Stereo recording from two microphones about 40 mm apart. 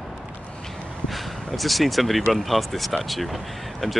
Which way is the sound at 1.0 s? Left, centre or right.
Centre.